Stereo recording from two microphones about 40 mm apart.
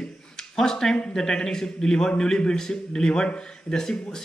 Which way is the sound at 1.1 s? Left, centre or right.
Centre.